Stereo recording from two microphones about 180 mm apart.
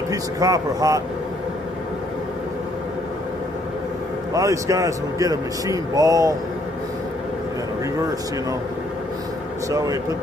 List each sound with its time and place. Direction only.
0.1 s a man's voice: 20° right (ahead or behind)
4.3 s a man's voice: 20° right (ahead or behind)
9.7 s a man's voice: 20° right (ahead or behind)